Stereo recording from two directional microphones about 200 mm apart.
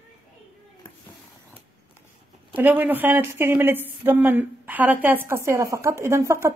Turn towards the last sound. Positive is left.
turn(degrees=-15)  # may be behind; listen again after turning